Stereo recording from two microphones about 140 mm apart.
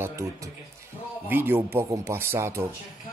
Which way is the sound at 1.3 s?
15° right (ahead or behind).